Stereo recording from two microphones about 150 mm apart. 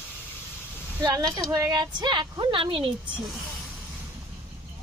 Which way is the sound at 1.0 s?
30° right (ahead or behind).